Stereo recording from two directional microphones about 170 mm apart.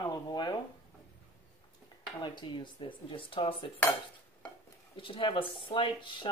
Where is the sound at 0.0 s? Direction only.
25° left (ahead or behind).